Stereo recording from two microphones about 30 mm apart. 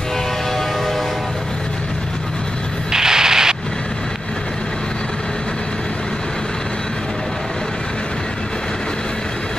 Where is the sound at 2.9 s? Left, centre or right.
Centre.